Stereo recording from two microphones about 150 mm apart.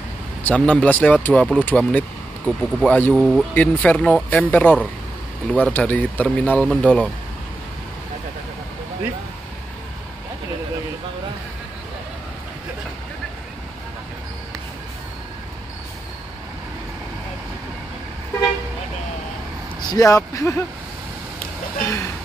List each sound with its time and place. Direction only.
0.4 s speech: 10° left (ahead or behind)
19.8 s speech: 25° left (ahead or behind)